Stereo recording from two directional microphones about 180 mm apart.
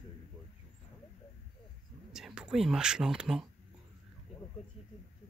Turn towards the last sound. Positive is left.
turn(degrees=0)  # may be behind; listen again after turning